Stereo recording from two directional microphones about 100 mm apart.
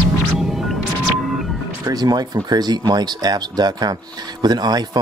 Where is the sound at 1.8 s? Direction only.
40° right (ahead or behind).